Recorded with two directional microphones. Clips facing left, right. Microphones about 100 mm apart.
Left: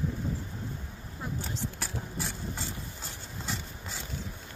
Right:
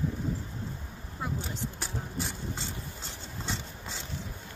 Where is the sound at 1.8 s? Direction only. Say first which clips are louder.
Right 1 dB; 20° right (ahead or behind).